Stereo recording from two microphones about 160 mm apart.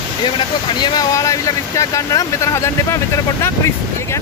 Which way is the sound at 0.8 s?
25° left (ahead or behind).